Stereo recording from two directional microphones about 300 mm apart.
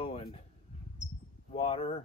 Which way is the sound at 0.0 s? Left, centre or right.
Centre.